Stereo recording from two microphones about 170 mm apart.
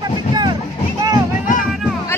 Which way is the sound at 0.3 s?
25° right (ahead or behind).